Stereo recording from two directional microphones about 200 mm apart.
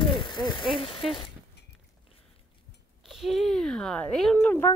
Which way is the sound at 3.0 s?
Centre (ahead or behind).